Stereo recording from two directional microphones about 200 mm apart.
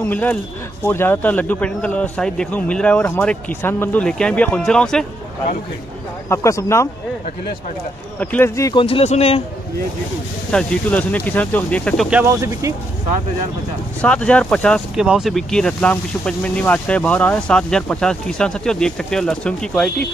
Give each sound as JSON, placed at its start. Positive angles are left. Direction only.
{"t": 0.0, "sound": "speech", "side_deg": 10}
{"t": 6.2, "sound": "speech", "side_deg": 15}
{"t": 8.2, "sound": "speech", "side_deg": 10}
{"t": 8.8, "sound": "a man's voice", "side_deg": 30}
{"t": 10.5, "sound": "speech", "side_deg": 5}
{"t": 12.1, "sound": "speech", "side_deg": -10}
{"t": 14.0, "sound": "speech", "side_deg": 5}